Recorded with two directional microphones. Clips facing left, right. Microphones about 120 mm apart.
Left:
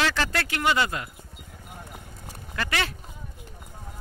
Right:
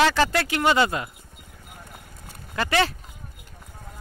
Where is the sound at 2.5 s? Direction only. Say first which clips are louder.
Right 6 dB; 30° right (ahead or behind).